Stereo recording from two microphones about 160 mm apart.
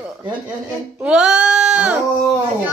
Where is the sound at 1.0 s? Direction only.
5° right (ahead or behind).